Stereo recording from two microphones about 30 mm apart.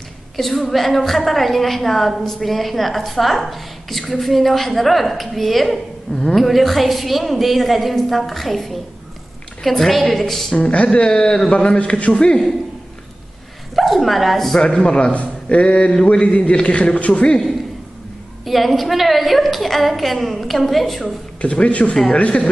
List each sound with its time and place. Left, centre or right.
0.4 s a woman's voice: centre
10.5 s a man's voice: left
10.9 s speech: left
11.5 s a man's voice: left
13.7 s speech: centre
14.6 s a man's voice: left
18.4 s a woman's voice: centre
21.4 s a man's voice: left